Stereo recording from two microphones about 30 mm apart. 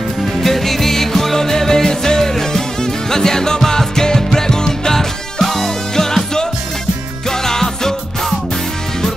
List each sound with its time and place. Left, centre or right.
0.3 s music: centre